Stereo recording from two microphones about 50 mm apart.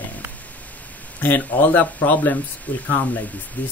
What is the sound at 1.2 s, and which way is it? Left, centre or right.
Speech, left.